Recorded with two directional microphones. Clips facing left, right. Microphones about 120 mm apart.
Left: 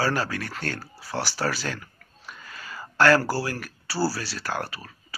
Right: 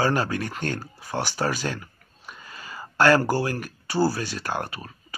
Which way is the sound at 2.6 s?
15° right (ahead or behind).